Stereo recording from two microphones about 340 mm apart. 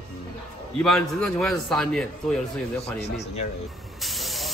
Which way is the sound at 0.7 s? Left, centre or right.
Centre.